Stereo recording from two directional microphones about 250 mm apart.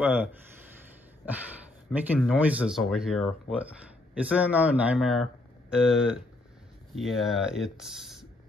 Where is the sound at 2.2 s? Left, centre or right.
Centre.